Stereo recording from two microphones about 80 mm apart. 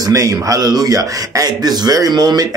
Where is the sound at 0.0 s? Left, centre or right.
Right.